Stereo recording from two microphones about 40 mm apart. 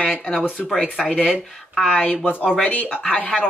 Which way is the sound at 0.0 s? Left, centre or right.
Left.